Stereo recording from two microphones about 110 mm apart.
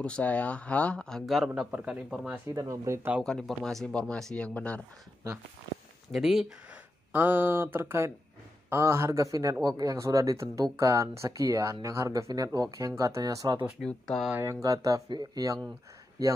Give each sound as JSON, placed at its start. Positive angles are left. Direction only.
{"t": 0.0, "sound": "speech", "side_deg": 10}
{"t": 2.5, "sound": "speech", "side_deg": -30}
{"t": 3.3, "sound": "speech", "side_deg": 5}
{"t": 6.1, "sound": "speech", "side_deg": 0}
{"t": 7.1, "sound": "speech", "side_deg": -20}
{"t": 13.8, "sound": "speech", "side_deg": 5}
{"t": 14.3, "sound": "speech", "side_deg": -25}